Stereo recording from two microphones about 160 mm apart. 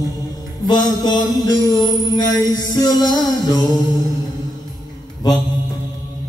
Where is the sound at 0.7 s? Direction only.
25° left (ahead or behind).